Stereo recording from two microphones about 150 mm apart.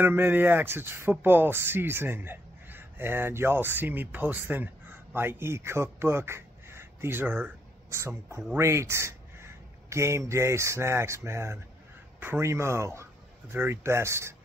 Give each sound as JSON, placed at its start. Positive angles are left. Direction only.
{"t": 0.0, "sound": "speech", "side_deg": -15}